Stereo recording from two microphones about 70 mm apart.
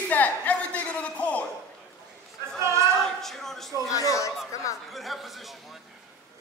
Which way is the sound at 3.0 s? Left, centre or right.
Centre.